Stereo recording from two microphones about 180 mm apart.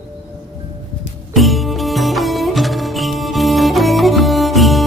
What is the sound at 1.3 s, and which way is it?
Music, centre (ahead or behind).